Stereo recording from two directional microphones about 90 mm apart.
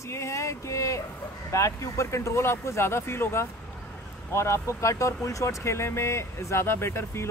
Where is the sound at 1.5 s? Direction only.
35° left (ahead or behind).